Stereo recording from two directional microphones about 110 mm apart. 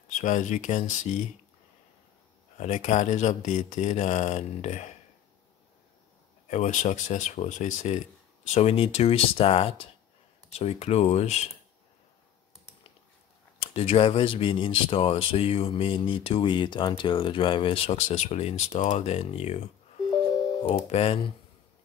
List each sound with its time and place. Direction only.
0.5 s speech: 90° left
2.6 s speech: 90° left
6.4 s speech: 90° left
8.5 s speech: 65° left (ahead or behind)
10.5 s speech: 70° left (ahead or behind)
13.7 s speech: 65° left (ahead or behind); by 19.6 s 90° left
20.6 s speech: 65° left (ahead or behind)